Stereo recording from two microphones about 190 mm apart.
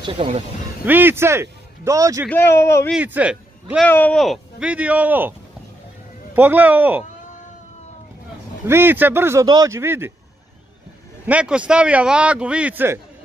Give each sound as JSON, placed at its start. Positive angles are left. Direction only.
{"t": 0.0, "sound": "speech", "side_deg": -30}
{"t": 0.8, "sound": "a man's voice", "side_deg": -10}
{"t": 2.2, "sound": "speech", "side_deg": 10}
{"t": 2.9, "sound": "a man's voice", "side_deg": -5}
{"t": 3.8, "sound": "a man's voice", "side_deg": 10}
{"t": 6.3, "sound": "a man's voice", "side_deg": -10}
{"t": 8.6, "sound": "a man's voice", "side_deg": -10}
{"t": 11.2, "sound": "a man's voice", "side_deg": -5}